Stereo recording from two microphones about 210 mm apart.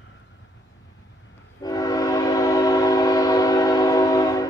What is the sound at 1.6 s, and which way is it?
Train, 15° left (ahead or behind).